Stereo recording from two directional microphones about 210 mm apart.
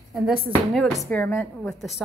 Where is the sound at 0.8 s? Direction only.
5° left (ahead or behind).